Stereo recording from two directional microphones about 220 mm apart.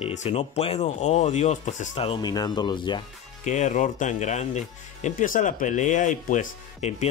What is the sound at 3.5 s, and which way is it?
Speech, 35° left (ahead or behind).